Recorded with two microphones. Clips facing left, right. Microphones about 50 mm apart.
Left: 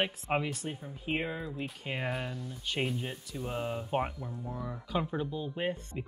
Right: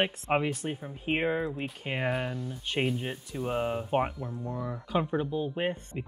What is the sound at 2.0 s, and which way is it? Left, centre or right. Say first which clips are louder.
Speech: right 8 dB; centre.